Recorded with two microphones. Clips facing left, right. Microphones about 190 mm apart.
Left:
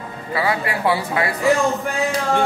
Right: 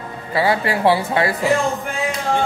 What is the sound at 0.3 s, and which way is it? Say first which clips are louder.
Speech: right 3 dB; 30° right (ahead or behind).